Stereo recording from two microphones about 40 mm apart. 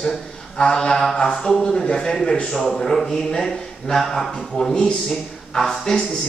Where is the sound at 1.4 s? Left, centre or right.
Centre.